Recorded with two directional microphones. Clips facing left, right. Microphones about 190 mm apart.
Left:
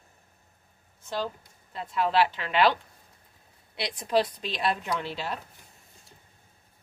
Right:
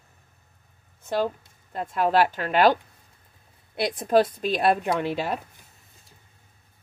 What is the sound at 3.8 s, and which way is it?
Speech, 50° right (ahead or behind).